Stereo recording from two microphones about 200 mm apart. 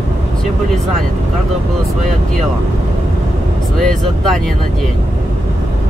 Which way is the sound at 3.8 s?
Centre (ahead or behind).